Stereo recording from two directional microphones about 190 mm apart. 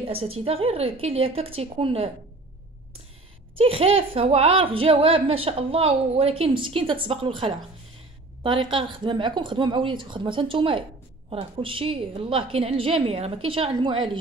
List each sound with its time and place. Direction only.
0.0 s a woman's voice: 30° right (ahead or behind)
3.5 s speech: 30° right (ahead or behind)